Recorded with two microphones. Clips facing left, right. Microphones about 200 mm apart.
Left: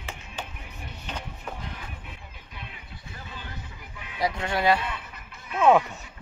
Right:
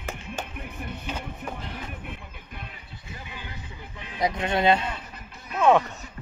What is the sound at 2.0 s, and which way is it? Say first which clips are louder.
Music: right 6 dB; 55° right (ahead or behind).